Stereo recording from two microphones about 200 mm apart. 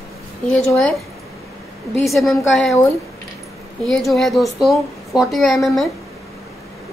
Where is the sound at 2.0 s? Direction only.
Centre (ahead or behind).